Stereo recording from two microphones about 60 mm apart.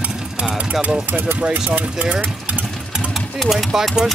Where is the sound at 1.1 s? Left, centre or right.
Right.